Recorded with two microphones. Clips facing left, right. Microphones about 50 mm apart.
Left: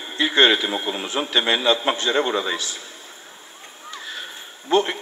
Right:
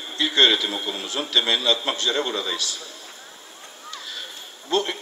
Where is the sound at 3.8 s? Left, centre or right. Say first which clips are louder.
Left 3 dB; left.